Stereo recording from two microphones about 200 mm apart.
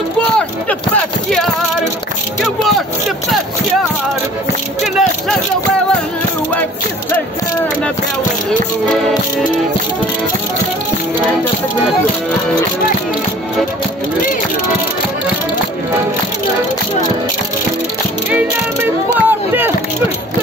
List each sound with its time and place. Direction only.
18.3 s music: 10° right (ahead or behind)